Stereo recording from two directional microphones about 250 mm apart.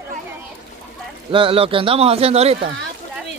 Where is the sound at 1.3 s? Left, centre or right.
Right.